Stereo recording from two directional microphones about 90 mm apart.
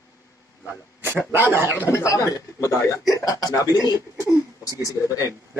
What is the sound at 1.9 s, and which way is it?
Speech, 35° left (ahead or behind).